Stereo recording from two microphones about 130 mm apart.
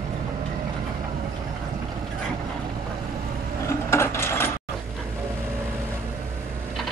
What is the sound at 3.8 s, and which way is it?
Wood, 20° left (ahead or behind).